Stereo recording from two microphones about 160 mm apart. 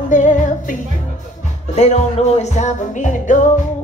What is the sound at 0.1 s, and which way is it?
Music, 50° left (ahead or behind).